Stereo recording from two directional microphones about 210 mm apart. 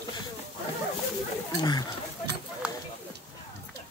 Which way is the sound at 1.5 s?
20° left (ahead or behind).